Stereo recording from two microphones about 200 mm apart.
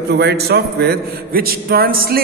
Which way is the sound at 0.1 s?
55° right (ahead or behind).